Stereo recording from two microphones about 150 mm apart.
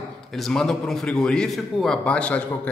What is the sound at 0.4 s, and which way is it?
A man's voice, 5° left (ahead or behind).